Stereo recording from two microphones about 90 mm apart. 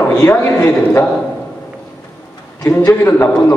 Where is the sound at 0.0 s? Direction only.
30° left (ahead or behind).